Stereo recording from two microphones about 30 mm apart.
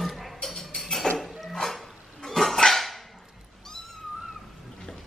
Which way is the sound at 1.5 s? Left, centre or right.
Centre.